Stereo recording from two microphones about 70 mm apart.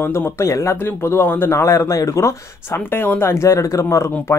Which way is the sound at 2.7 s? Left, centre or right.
Left.